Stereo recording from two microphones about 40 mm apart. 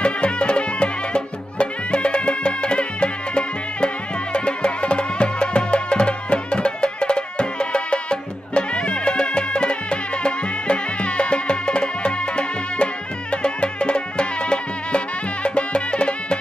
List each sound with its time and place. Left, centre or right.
0.0 s music: left